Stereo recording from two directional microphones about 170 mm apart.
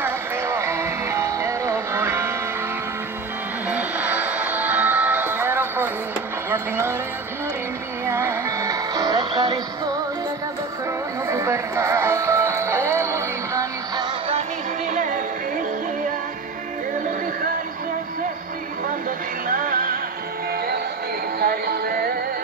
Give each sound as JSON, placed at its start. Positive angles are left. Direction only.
{"t": 0.0, "sound": "music", "side_deg": -15}
{"t": 3.6, "sound": "music", "side_deg": -10}
{"t": 8.0, "sound": "music", "side_deg": -15}
{"t": 11.2, "sound": "music", "side_deg": -15}
{"t": 14.9, "sound": "music", "side_deg": -50}
{"t": 19.0, "sound": "music", "side_deg": -55}
{"t": 21.4, "sound": "music", "side_deg": -65}